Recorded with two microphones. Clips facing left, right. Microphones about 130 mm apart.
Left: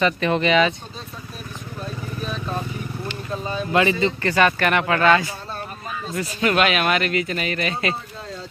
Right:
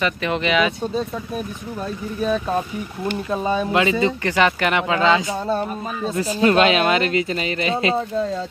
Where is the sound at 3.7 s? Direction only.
10° right (ahead or behind).